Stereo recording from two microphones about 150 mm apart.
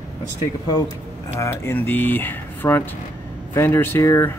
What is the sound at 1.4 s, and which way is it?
Speech, 15° left (ahead or behind).